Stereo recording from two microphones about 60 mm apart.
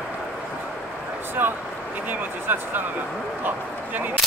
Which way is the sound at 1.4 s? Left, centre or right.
Right.